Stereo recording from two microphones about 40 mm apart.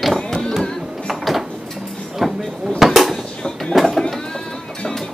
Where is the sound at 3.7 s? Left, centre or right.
Centre.